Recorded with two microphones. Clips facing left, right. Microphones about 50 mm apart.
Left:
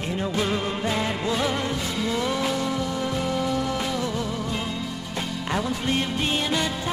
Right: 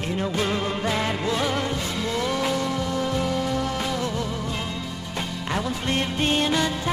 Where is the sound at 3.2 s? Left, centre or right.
Centre.